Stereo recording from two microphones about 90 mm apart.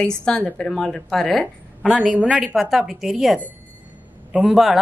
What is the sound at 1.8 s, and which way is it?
A woman's voice, 10° right (ahead or behind).